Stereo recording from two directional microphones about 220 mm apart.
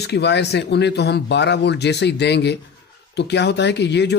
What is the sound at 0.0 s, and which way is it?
Speech, 50° left (ahead or behind).